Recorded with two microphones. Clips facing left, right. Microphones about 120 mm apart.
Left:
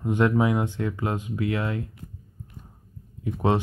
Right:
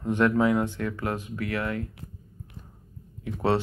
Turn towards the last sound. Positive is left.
turn(degrees=20)  # may be behind; listen again after turning